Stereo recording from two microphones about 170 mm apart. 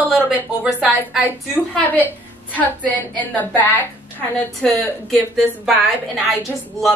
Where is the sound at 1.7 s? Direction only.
10° left (ahead or behind).